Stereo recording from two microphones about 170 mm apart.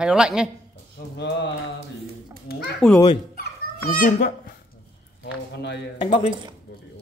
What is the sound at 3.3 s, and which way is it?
Dog, 60° left (ahead or behind).